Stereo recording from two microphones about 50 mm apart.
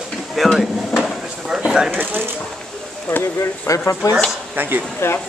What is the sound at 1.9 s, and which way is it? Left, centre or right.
Speech, right.